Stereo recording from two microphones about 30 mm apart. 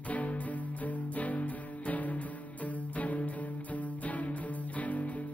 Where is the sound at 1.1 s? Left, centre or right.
Left.